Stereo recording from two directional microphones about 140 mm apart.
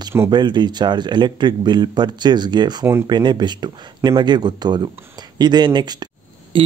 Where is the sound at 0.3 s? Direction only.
30° right (ahead or behind).